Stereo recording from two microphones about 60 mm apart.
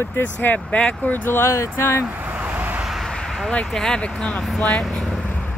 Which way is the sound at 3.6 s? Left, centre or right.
Centre.